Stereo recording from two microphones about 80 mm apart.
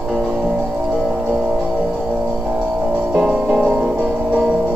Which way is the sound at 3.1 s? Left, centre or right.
Centre.